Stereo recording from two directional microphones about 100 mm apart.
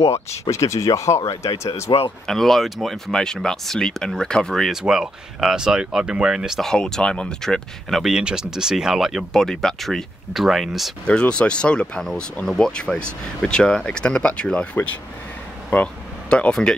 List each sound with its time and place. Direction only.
0.5 s speech: 30° left (ahead or behind)
1.9 s speech: 60° left (ahead or behind)
2.2 s speech: 5° left (ahead or behind)
11.1 s speech: 10° left (ahead or behind)